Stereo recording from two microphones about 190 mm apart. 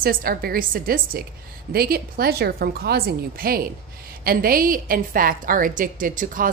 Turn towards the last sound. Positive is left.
turn(degrees=-45)  # may be behind; listen again after turning